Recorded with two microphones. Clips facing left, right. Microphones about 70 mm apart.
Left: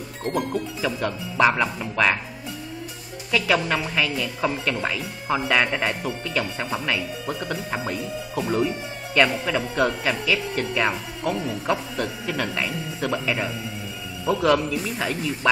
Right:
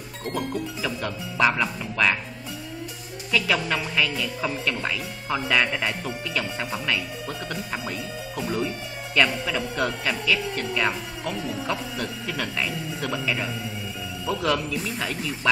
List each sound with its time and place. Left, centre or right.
0.2 s speech: centre
3.3 s speech: centre
9.1 s speech: centre